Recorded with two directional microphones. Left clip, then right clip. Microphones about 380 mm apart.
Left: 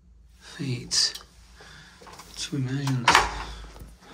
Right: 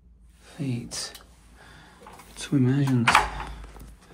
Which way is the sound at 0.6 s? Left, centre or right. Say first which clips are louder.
Left 8 dB; centre.